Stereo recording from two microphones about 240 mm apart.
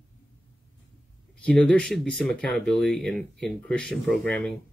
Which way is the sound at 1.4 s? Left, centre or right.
Centre.